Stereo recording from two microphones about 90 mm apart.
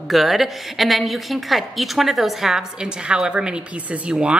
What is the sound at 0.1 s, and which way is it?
A woman's voice, centre (ahead or behind).